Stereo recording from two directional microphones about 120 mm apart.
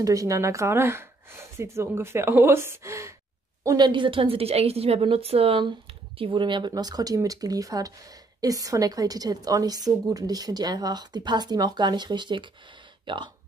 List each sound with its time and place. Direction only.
0.0 s speech: 30° right (ahead or behind)
3.6 s a woman's voice: 35° right (ahead or behind)